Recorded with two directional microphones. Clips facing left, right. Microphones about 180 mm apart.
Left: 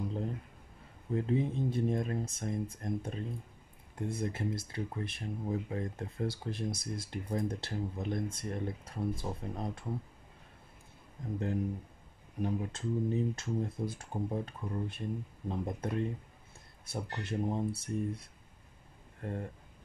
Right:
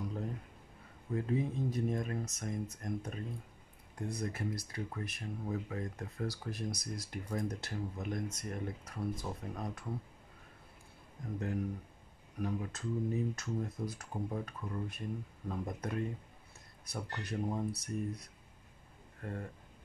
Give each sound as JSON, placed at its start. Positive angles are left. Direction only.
{"t": 1.1, "sound": "speech", "side_deg": 25}
{"t": 11.3, "sound": "speech", "side_deg": 30}